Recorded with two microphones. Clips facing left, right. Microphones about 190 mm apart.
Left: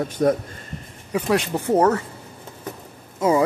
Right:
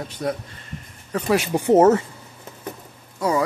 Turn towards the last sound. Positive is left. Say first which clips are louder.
# left 3 dB
turn(degrees=20)  # may be behind; listen again after turning